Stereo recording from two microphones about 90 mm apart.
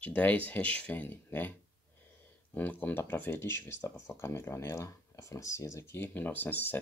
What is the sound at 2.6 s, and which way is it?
Speech, 20° left (ahead or behind).